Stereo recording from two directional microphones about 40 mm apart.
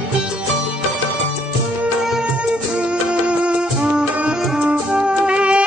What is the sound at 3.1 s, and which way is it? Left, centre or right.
Music, right.